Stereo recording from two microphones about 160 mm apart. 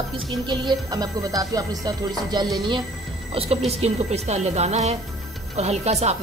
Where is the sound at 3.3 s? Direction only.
40° right (ahead or behind).